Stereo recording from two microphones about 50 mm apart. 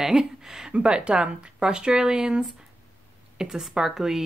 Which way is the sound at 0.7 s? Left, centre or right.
Right.